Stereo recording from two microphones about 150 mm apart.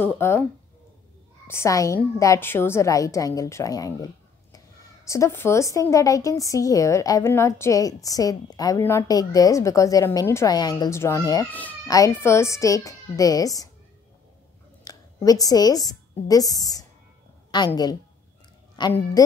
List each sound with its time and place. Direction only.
0.0 s speech: 15° left (ahead or behind)
1.5 s a woman's voice: 20° left (ahead or behind)
14.9 s a woman's voice: 25° left (ahead or behind)
18.8 s a woman's voice: 30° left (ahead or behind)